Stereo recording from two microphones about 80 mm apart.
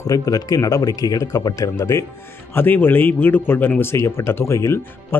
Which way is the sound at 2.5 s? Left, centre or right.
Left.